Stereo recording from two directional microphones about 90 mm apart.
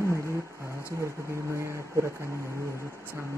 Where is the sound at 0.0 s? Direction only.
30° right (ahead or behind).